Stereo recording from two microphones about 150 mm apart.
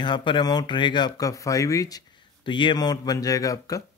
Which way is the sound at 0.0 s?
30° left (ahead or behind).